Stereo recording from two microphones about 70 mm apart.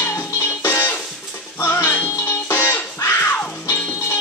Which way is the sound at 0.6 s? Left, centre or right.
Left.